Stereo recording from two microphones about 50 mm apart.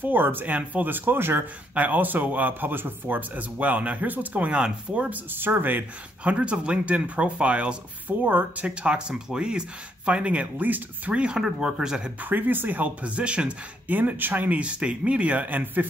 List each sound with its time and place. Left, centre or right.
0.0 s speech: right
0.5 s speech: right
1.8 s speech: right
5.1 s speech: right
6.2 s speech: right
8.2 s speech: right
8.6 s speech: centre
10.6 s speech: right
11.1 s speech: centre
12.2 s speech: right
13.8 s speech: right